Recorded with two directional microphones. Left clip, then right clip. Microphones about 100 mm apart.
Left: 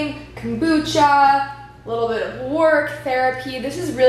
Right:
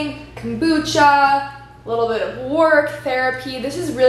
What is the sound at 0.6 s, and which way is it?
Speech, 15° right (ahead or behind).